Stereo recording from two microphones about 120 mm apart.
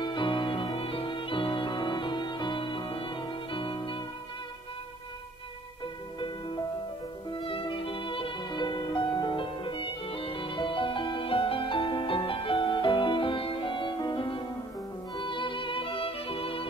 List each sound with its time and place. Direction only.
0.0 s music: 40° left (ahead or behind)
6.1 s music: 40° left (ahead or behind)